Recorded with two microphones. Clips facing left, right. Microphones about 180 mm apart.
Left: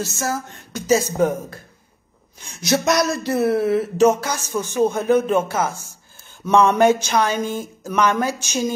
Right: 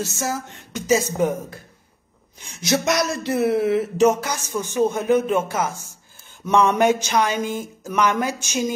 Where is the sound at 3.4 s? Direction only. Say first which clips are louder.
Even; 20° right (ahead or behind).